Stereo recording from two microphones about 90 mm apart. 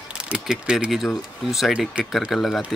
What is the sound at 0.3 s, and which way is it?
Speech, 10° right (ahead or behind).